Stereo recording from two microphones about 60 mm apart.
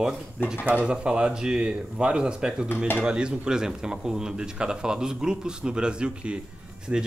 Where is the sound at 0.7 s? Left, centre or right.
Centre.